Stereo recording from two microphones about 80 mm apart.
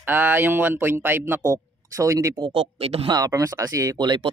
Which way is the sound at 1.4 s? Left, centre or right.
Right.